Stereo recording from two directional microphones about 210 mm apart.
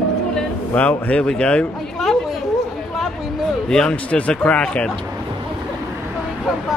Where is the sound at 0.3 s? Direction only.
5° left (ahead or behind).